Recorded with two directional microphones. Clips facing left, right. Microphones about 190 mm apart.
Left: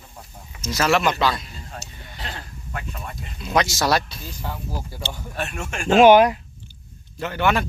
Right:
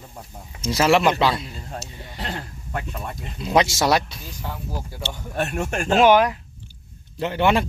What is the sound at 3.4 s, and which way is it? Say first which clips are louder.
Speech: right 2 dB; 25° right (ahead or behind).